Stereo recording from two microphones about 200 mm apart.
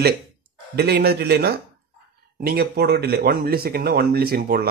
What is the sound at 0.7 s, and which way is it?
Speech, 55° right (ahead or behind).